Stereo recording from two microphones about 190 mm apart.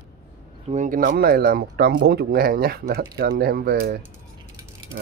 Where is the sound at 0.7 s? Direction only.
40° right (ahead or behind).